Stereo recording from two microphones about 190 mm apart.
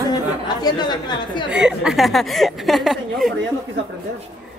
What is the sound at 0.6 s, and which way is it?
Speech, 25° left (ahead or behind).